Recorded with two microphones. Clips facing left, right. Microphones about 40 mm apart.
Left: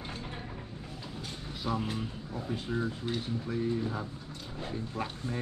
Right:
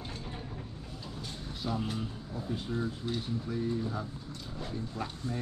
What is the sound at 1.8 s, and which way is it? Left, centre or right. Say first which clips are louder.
Speech: left 1 dB; left.